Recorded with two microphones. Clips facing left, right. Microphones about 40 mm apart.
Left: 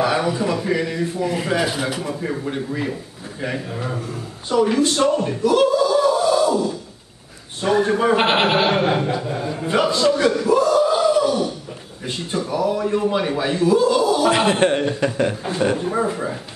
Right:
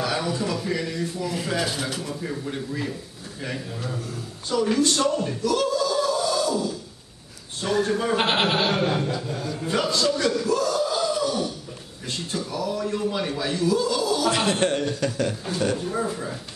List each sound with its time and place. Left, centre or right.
0.0 s speech: left